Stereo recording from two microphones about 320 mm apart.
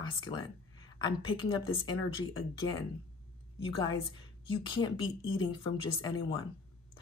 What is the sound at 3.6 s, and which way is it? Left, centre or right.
Speech, centre.